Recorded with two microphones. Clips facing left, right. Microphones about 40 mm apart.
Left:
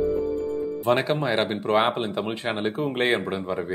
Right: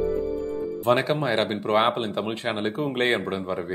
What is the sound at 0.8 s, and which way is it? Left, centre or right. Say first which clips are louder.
Speech: right 1 dB; centre.